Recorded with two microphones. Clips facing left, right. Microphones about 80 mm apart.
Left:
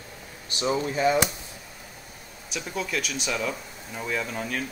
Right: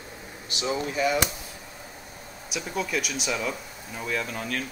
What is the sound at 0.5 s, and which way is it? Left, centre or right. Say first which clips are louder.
Speech: left 2 dB; left.